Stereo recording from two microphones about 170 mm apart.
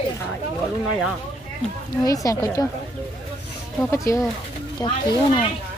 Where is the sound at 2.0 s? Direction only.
20° left (ahead or behind).